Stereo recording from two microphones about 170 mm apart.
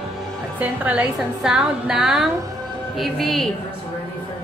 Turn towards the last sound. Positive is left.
turn(degrees=0)  # may be behind; listen again after turning